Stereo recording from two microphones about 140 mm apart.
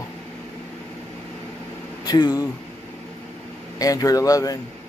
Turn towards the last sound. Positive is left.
turn(degrees=25)  # may be behind; listen again after turning